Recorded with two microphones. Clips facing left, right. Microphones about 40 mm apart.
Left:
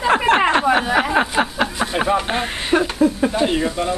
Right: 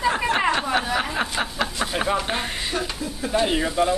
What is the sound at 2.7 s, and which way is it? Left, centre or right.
Speech, left.